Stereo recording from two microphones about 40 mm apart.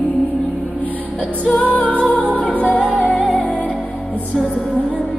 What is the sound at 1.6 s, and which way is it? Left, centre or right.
Music, left.